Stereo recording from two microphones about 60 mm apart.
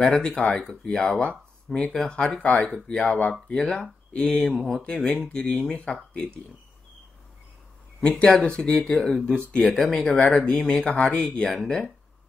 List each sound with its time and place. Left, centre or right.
0.0 s speech: centre
4.3 s speech: centre
8.0 s speech: centre
9.3 s speech: centre
9.7 s speech: centre
10.1 s speech: centre